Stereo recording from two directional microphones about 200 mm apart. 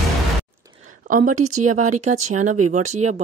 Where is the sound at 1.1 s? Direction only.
40° right (ahead or behind).